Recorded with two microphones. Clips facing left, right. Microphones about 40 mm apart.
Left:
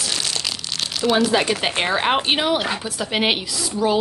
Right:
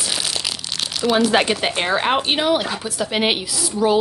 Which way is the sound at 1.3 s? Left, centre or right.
Right.